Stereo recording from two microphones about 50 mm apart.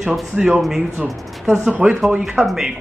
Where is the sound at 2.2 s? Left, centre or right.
Centre.